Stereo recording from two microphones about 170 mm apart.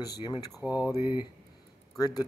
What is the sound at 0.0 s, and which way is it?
Speech, 25° left (ahead or behind).